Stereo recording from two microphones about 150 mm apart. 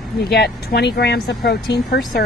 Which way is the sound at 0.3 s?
90° left.